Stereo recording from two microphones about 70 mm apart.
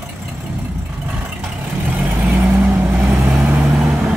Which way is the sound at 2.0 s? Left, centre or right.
Right.